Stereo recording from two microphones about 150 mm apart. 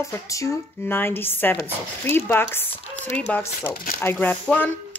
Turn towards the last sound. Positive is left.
turn(degrees=10)  # may be behind; listen again after turning